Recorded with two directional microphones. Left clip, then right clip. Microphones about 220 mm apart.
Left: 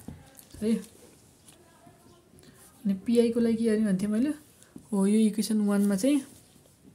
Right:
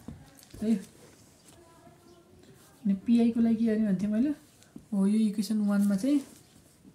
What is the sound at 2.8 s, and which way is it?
A woman's voice, 55° left (ahead or behind).